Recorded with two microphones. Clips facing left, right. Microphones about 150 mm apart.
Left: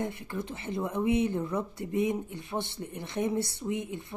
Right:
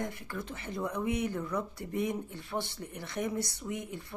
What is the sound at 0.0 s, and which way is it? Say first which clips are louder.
Speech: left 4 dB; 20° left (ahead or behind).